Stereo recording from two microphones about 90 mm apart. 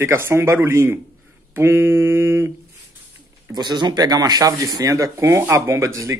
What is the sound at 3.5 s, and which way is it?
Speech, 55° right (ahead or behind).